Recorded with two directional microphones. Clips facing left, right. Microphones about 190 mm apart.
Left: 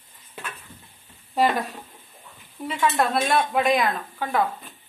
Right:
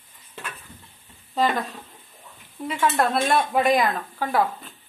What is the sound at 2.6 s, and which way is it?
Speech, centre (ahead or behind).